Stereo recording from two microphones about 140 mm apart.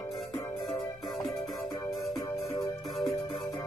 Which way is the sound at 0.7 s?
30° left (ahead or behind).